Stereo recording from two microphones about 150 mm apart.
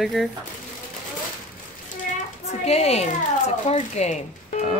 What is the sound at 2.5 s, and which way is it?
Speech, 45° left (ahead or behind).